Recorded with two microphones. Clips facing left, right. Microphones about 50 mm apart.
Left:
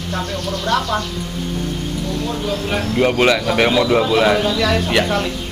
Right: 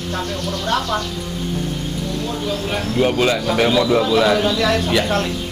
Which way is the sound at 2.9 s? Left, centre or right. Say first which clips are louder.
Left 2 dB; left.